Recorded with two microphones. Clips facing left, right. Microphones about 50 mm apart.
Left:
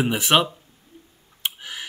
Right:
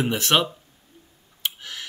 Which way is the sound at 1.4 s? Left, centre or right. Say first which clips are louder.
Left 1 dB; centre.